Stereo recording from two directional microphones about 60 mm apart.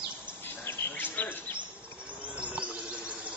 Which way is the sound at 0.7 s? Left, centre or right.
Left.